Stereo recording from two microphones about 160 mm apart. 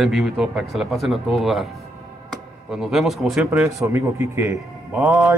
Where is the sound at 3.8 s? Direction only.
20° right (ahead or behind).